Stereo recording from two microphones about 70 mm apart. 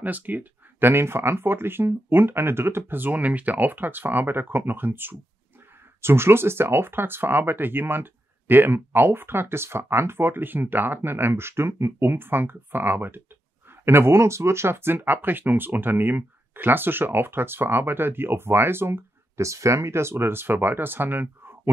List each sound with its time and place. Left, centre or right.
0.0 s speech: right